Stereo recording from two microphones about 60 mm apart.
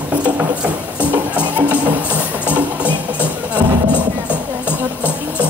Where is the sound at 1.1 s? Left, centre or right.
Right.